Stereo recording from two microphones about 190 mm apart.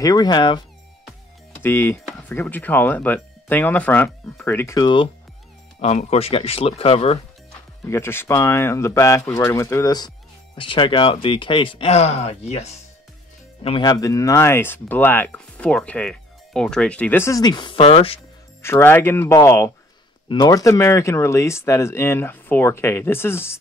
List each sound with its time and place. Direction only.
0.0 s speech: 20° left (ahead or behind)
1.6 s speech: 15° left (ahead or behind); by 7.2 s 30° left (ahead or behind)
7.8 s speech: 15° left (ahead or behind); by 18.2 s 30° left (ahead or behind)
18.6 s speech: 10° left (ahead or behind)